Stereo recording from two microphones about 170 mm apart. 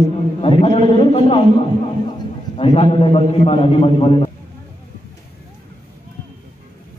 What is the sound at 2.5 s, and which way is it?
A man's voice, 35° left (ahead or behind).